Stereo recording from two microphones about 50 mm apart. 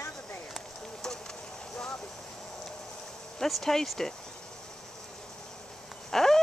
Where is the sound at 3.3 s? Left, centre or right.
Centre.